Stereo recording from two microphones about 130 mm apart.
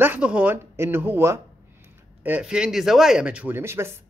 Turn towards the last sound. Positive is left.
turn(degrees=-20)  # may be behind; listen again after turning